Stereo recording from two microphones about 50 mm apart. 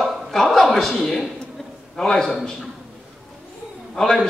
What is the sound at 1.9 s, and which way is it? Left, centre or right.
Speech, centre.